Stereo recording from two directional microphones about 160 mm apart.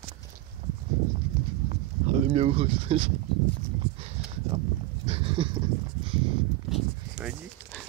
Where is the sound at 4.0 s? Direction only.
40° right (ahead or behind).